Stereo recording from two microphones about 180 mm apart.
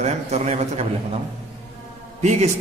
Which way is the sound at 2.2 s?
40° right (ahead or behind).